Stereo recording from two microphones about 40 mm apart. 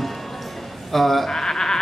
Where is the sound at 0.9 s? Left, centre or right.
Centre.